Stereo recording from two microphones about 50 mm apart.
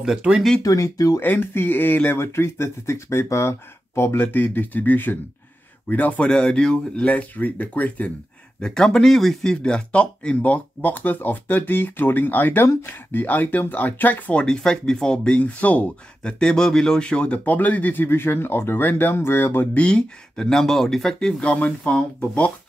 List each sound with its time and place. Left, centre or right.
0.7 s speech: left
1.2 s speech: left
2.0 s speech: left
6.2 s speech: left
8.5 s speech: centre
9.6 s speech: centre; by 14.3 s left
14.3 s speech: centre; by 15.9 s left
16.2 s speech: centre
17.6 s speech: left
18.0 s speech: left
19.7 s speech: left
21.4 s speech: left